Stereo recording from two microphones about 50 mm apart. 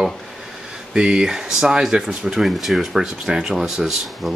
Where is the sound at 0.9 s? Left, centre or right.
Centre.